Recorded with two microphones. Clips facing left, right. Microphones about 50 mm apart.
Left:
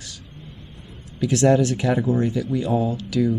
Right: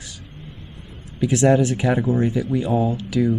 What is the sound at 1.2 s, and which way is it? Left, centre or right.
Speech, centre.